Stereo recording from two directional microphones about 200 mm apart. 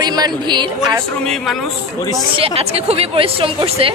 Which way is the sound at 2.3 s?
30° right (ahead or behind).